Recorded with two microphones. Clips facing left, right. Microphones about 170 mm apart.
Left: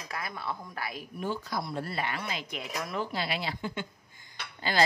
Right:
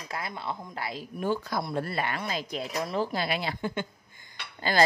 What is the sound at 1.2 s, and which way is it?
Speech, 55° right (ahead or behind).